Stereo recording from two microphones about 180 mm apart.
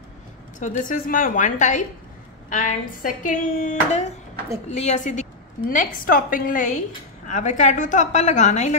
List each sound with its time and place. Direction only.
0.6 s a woman's voice: 45° left (ahead or behind)